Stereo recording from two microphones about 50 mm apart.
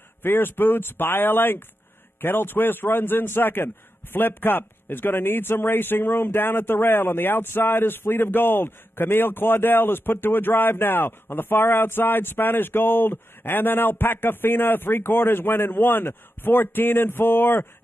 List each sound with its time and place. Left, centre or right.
0.2 s a man's voice: left